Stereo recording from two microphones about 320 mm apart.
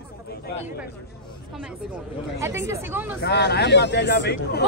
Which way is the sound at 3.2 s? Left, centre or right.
Left.